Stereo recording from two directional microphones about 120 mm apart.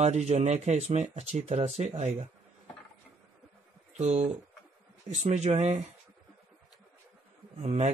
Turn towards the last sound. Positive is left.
turn(degrees=-70)  # may be behind; listen again after turning